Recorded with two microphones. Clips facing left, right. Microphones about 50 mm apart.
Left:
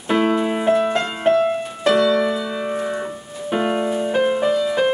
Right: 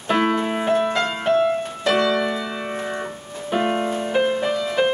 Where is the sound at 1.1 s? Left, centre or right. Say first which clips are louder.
Left 2 dB; centre.